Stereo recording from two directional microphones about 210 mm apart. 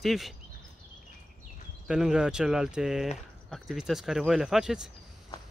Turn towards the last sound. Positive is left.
turn(degrees=-5)  # may be behind; listen again after turning